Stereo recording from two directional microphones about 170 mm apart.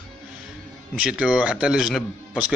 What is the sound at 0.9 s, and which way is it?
Speech, 5° right (ahead or behind).